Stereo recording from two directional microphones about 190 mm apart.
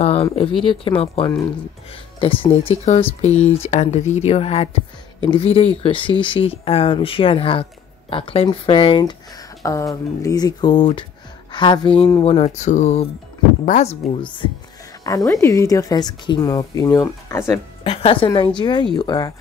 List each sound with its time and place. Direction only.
0.0 s a woman's voice: 30° left (ahead or behind); by 17.6 s 15° left (ahead or behind)
17.8 s speech: 30° left (ahead or behind)